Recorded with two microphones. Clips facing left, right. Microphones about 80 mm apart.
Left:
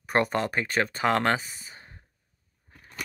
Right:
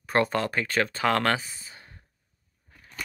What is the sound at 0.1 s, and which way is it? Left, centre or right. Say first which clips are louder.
Speech: even; left.